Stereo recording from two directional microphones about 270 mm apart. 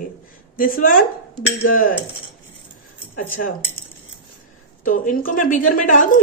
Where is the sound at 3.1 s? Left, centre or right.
Left.